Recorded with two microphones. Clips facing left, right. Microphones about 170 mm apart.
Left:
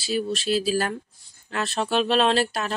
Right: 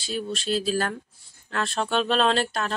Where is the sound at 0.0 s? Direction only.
5° left (ahead or behind).